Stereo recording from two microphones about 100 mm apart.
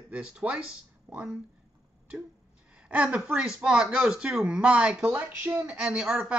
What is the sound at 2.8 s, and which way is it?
Speech, 10° right (ahead or behind).